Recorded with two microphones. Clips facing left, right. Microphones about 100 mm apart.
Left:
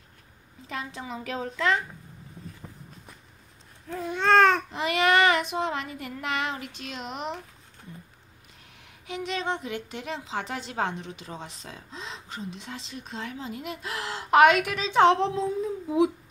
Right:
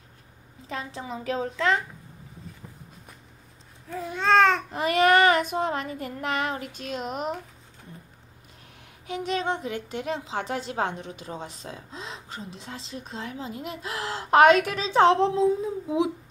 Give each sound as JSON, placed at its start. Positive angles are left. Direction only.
{"t": 0.7, "sound": "speech", "side_deg": -35}
{"t": 3.9, "sound": "babbling", "side_deg": 0}
{"t": 4.7, "sound": "child singing", "side_deg": -45}
{"t": 9.0, "sound": "speech", "side_deg": -40}